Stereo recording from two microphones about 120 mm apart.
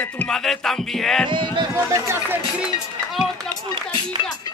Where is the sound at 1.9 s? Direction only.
25° right (ahead or behind).